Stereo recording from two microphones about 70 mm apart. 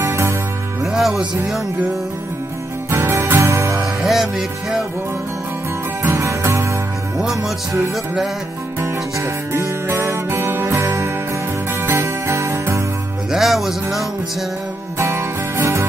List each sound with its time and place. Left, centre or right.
0.0 s music: right
0.9 s music: centre
2.9 s music: right
3.8 s music: centre
6.1 s music: right
7.2 s music: centre
8.8 s music: right
13.3 s music: centre
15.0 s music: right